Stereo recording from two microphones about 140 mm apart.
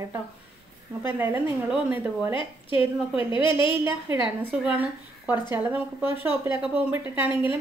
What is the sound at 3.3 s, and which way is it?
Speech, 35° left (ahead or behind).